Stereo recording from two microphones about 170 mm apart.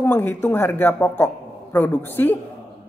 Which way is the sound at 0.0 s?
10° left (ahead or behind).